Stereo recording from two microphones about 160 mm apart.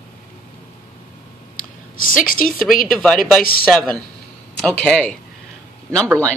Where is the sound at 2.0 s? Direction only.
60° left (ahead or behind).